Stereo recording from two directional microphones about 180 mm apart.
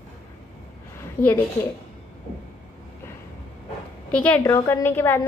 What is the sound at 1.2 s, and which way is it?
Speech, 10° left (ahead or behind).